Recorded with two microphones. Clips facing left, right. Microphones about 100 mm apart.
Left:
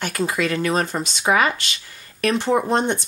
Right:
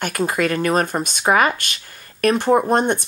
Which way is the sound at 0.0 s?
50° right (ahead or behind).